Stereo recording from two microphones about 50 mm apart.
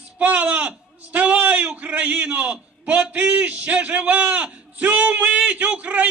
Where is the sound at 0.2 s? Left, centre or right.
Right.